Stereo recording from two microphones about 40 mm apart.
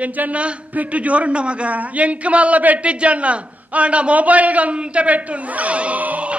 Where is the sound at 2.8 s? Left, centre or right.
Right.